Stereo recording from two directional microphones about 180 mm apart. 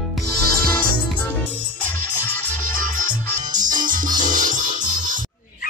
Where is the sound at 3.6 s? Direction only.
45° right (ahead or behind).